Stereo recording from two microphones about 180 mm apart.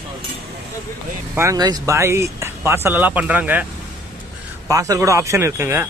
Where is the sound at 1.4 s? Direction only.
20° right (ahead or behind).